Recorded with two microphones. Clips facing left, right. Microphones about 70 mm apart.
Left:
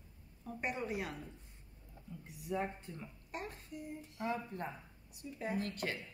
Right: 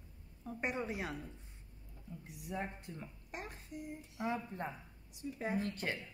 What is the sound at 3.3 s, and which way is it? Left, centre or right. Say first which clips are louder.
Speech: left 2 dB; centre.